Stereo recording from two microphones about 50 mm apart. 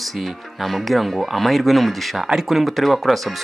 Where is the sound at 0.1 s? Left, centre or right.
Centre.